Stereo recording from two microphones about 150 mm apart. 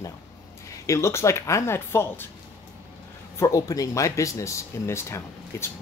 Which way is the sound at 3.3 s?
20° left (ahead or behind).